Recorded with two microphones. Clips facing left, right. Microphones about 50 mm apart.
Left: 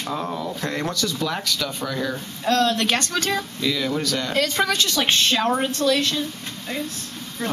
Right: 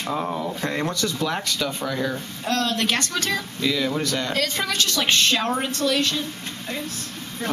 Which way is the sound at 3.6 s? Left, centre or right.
Centre.